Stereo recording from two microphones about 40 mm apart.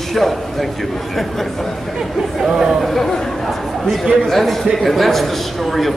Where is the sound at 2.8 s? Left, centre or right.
Centre.